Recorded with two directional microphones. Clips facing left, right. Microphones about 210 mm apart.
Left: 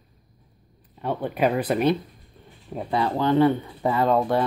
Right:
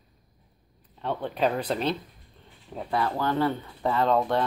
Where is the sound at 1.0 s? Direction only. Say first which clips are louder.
Left 3 dB; 10° left (ahead or behind).